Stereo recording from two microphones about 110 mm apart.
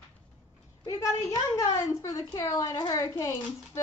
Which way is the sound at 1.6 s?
30° left (ahead or behind).